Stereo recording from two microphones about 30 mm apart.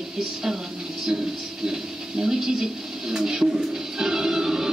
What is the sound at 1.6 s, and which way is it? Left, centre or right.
Speech, centre.